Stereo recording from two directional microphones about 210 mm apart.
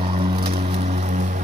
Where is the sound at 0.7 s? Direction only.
30° right (ahead or behind).